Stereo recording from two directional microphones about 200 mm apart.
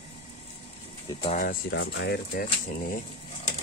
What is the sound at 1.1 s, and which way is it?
Speech, 35° left (ahead or behind).